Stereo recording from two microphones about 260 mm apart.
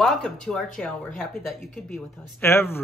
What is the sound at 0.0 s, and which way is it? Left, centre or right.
A woman's voice, centre.